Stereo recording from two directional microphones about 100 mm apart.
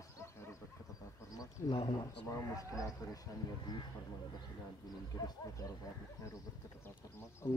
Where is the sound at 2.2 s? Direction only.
30° left (ahead or behind).